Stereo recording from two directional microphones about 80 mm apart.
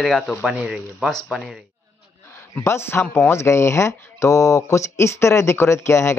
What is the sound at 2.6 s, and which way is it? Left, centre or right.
Speech, left.